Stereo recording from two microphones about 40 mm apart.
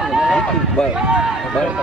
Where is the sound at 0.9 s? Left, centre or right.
Right.